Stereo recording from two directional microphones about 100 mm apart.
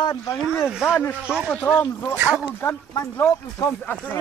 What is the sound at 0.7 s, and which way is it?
Speech, 5° right (ahead or behind).